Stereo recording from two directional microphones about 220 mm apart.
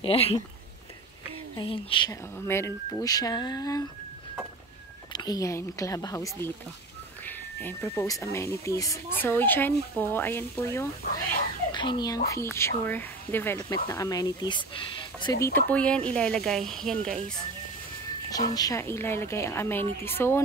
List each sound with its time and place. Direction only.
0.0 s speech: 25° left (ahead or behind)
1.6 s speech: 20° left (ahead or behind)
2.3 s speech: 10° left (ahead or behind)
5.1 s speech: 15° left (ahead or behind)
15.4 s speech: 10° left (ahead or behind)
18.3 s speech: 15° left (ahead or behind)